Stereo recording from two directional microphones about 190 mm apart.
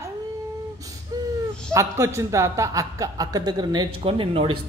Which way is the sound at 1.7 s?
15° right (ahead or behind).